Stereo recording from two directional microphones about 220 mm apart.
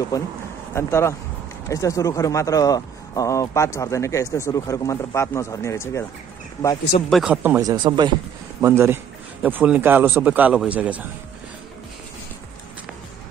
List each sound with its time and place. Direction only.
0.7 s speech: 10° left (ahead or behind)
7.1 s speech: 5° right (ahead or behind)
7.6 s speech: 20° right (ahead or behind)